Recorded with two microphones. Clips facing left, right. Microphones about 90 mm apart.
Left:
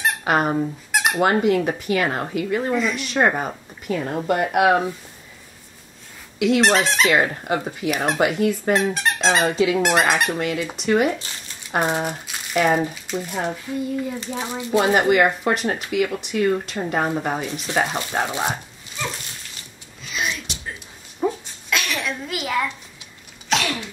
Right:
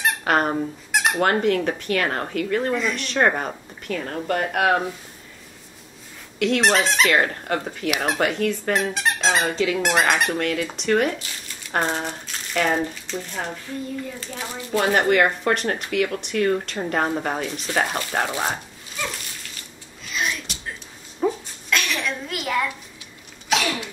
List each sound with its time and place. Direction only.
0.0 s speech: 5° left (ahead or behind)
6.4 s speech: 5° left (ahead or behind)
20.0 s music: centre (ahead or behind)
21.2 s a sound: centre (ahead or behind)
23.5 s sneeze: 5° right (ahead or behind)